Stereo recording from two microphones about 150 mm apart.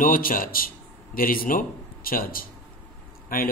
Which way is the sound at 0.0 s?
70° left (ahead or behind).